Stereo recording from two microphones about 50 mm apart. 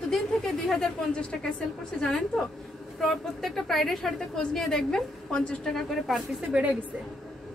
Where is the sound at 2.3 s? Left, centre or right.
Centre.